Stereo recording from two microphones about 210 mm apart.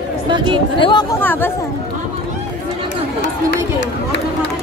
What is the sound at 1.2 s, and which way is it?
Speech, 10° left (ahead or behind).